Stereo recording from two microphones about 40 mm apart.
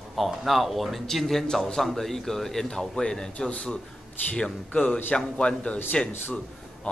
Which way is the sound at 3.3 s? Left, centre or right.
Left.